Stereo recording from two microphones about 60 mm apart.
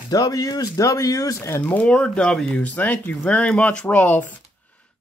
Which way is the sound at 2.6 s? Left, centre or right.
Left.